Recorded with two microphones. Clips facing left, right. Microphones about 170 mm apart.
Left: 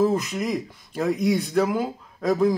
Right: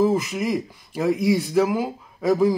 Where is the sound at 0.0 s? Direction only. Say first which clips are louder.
Right 2 dB; 5° right (ahead or behind).